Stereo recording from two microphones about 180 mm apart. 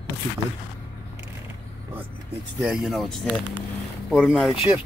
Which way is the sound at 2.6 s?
Centre (ahead or behind).